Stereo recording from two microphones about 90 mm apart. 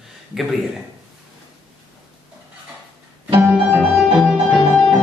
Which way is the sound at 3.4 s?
20° right (ahead or behind).